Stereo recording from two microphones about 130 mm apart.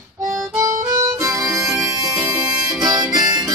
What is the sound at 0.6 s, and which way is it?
Music, 25° right (ahead or behind).